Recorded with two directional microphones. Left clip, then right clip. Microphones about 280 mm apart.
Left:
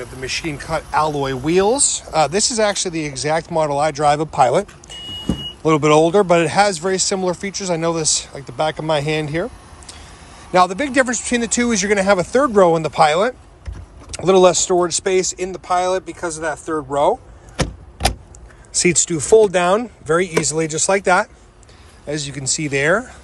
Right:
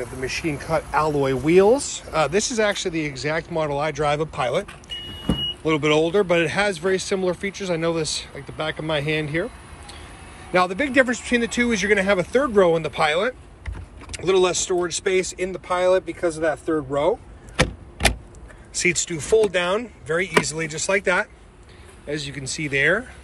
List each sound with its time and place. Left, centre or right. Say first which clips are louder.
0.0 s speech: left 2 dB; centre
17.6 s a sound: right 1 dB; centre
18.7 s speech: left 5 dB; centre